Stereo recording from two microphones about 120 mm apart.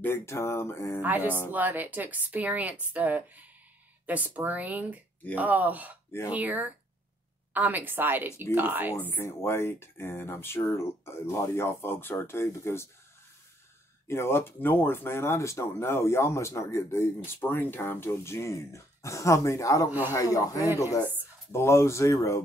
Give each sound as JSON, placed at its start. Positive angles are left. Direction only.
{"t": 0.0, "sound": "speech", "side_deg": 20}
{"t": 1.0, "sound": "speech", "side_deg": -15}
{"t": 8.9, "sound": "speech", "side_deg": 15}
{"t": 14.0, "sound": "speech", "side_deg": 20}
{"t": 20.6, "sound": "speech", "side_deg": -20}
{"t": 21.5, "sound": "speech", "side_deg": 20}